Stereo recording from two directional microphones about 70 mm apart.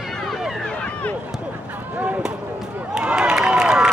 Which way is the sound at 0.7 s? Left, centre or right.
Centre.